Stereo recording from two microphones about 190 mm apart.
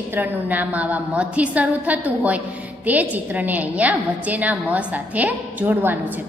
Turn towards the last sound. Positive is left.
turn(degrees=-10)  # may be behind; listen again after turning